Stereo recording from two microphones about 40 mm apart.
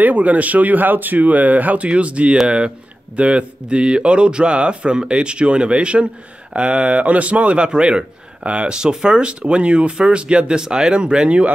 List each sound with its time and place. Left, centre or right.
0.0 s speech: right